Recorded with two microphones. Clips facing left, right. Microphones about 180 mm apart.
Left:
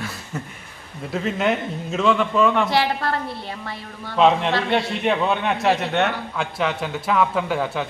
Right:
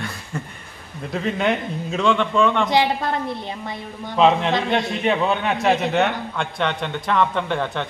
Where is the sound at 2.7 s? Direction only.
20° right (ahead or behind).